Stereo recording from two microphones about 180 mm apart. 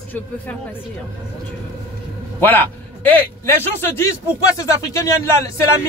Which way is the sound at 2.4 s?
10° left (ahead or behind).